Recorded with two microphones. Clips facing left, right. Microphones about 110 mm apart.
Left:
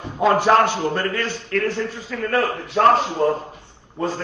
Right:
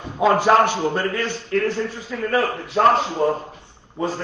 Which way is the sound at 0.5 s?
Centre (ahead or behind).